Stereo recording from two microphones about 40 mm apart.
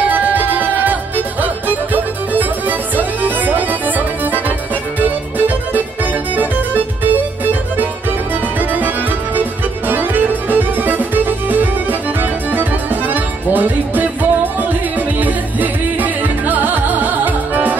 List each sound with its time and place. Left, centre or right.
0.1 s music: right
6.3 s music: right
8.5 s music: right